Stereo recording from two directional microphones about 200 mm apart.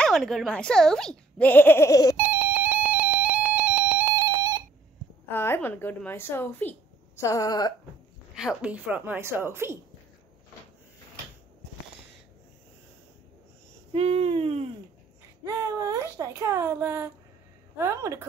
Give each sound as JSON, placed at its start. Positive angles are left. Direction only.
{"t": 0.0, "sound": "speech", "side_deg": 0}
{"t": 2.1, "sound": "alarm clock", "side_deg": -10}
{"t": 4.3, "sound": "telephone dialing", "side_deg": -20}
{"t": 5.3, "sound": "a woman's voice", "side_deg": 10}
{"t": 8.4, "sound": "speech", "side_deg": -5}
{"t": 13.9, "sound": "a sound", "side_deg": -30}
{"t": 15.4, "sound": "speech", "side_deg": -15}